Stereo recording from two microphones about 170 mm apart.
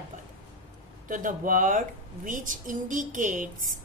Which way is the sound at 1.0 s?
50° right (ahead or behind).